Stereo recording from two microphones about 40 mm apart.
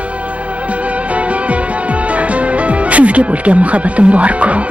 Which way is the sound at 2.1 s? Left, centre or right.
Right.